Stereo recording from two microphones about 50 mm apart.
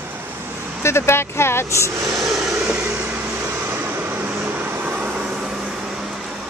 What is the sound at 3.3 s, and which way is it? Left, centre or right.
Vehicle, right.